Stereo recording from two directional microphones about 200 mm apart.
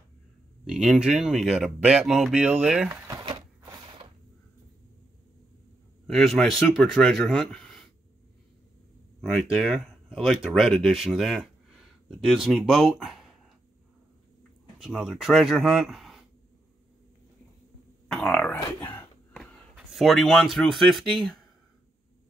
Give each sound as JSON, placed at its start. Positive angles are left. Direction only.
{"t": 0.7, "sound": "speech", "side_deg": 0}
{"t": 3.1, "sound": "a sound", "side_deg": -20}
{"t": 6.0, "sound": "speech", "side_deg": 0}
{"t": 9.2, "sound": "speech", "side_deg": 0}
{"t": 14.8, "sound": "speech", "side_deg": 0}
{"t": 18.0, "sound": "speech", "side_deg": 5}